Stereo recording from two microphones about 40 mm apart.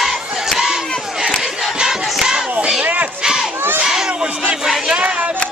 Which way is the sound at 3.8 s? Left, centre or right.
Centre.